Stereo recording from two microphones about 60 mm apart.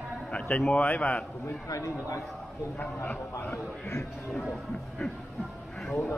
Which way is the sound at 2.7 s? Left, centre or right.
Left.